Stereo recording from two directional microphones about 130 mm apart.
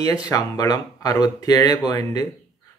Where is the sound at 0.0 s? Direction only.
25° left (ahead or behind).